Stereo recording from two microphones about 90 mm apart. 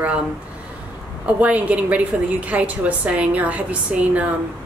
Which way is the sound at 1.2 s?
15° right (ahead or behind).